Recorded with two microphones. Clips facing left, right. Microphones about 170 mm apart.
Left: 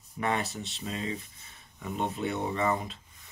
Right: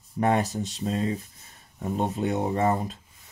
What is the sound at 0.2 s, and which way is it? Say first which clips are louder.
Speech: right 7 dB; 45° right (ahead or behind).